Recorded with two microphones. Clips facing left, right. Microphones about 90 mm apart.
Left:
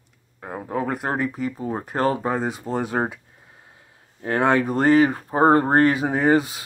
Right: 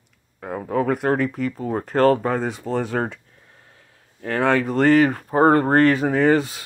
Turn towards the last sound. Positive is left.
turn(degrees=5)  # may be behind; listen again after turning